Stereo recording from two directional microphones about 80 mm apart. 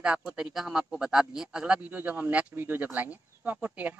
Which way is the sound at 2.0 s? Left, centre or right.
Right.